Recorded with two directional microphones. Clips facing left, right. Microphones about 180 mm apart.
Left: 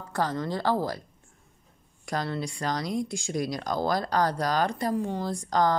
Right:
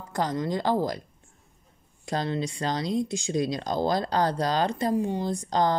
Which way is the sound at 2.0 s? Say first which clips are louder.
Right 2 dB; 20° right (ahead or behind).